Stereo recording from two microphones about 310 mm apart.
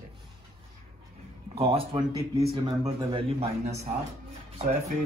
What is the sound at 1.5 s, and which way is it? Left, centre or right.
A man's voice, centre.